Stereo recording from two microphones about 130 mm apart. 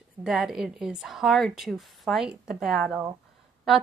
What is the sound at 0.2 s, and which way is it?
A woman's voice, 5° right (ahead or behind).